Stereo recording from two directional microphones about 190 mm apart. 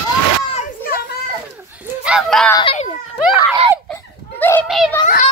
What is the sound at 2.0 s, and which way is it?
Speech, centre (ahead or behind).